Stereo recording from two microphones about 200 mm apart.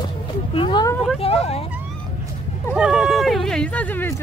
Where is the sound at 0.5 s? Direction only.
25° left (ahead or behind).